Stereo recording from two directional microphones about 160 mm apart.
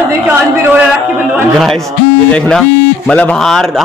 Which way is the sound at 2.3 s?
10° left (ahead or behind).